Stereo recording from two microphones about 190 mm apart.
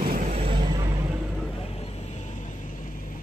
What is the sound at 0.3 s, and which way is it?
Vehicle, 30° right (ahead or behind).